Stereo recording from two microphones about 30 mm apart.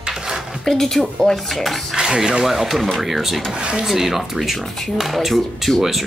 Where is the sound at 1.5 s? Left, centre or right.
Centre.